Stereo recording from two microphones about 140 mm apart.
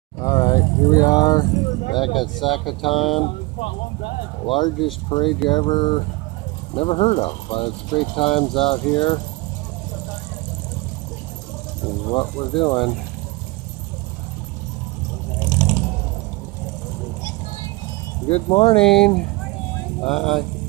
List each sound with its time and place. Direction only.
0.2 s vehicle: 25° left (ahead or behind)
2.4 s speech: 35° left (ahead or behind)
4.5 s speech: 35° left (ahead or behind)
12.1 s speech: 35° left (ahead or behind)
18.5 s speech: 40° left (ahead or behind)
18.8 s speech: 5° left (ahead or behind)
20.1 s speech: 50° left (ahead or behind)